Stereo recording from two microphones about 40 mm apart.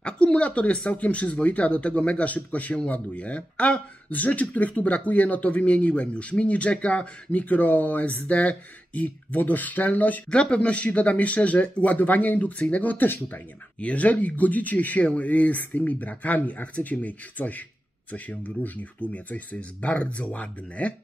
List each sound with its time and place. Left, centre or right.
0.0 s speech: left
7.3 s speech: left
9.4 s speech: left
10.3 s speech: left
12.5 s speech: left
12.8 s speech: left
13.7 s speech: left